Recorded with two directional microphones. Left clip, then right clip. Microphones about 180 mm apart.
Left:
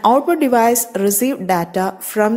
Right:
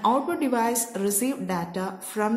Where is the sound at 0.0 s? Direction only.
35° left (ahead or behind).